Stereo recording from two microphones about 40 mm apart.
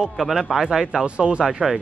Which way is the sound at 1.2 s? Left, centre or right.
Right.